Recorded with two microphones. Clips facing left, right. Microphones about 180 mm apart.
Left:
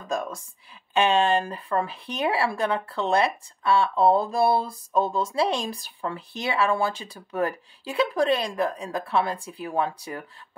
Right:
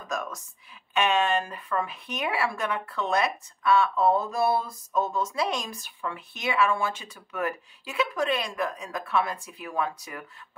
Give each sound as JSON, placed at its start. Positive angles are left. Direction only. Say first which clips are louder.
{"t": 0.1, "sound": "speech", "louder": "left 4 dB", "side_deg": 30}